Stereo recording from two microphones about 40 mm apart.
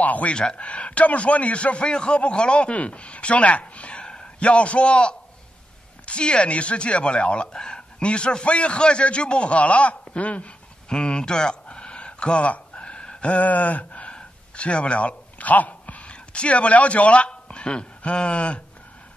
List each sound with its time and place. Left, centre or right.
0.0 s a man's voice: left
0.3 s a man's voice: left
10.9 s a sound: left
14.1 s speech: left